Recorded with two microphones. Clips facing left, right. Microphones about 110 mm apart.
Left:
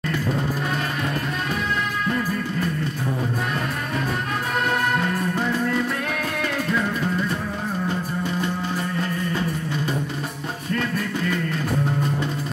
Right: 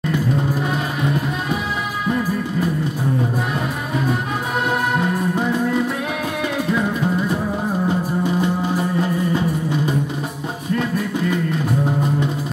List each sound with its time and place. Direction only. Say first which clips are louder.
0.0 s music: right 4 dB; 5° right (ahead or behind)
3.9 s music: right 5 dB; 5° right (ahead or behind)